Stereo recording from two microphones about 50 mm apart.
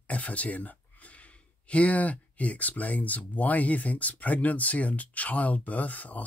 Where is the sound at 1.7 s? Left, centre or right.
Left.